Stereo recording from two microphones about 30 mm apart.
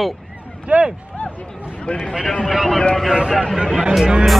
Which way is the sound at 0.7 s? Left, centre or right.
Right.